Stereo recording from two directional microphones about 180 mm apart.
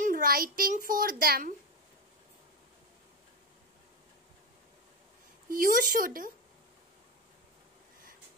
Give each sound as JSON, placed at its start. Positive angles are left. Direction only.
{"t": 0.0, "sound": "a child's voice", "side_deg": -50}
{"t": 5.5, "sound": "speech", "side_deg": -50}